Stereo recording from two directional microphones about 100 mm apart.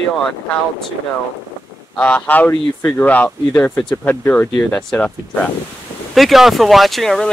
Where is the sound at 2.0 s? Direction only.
15° left (ahead or behind).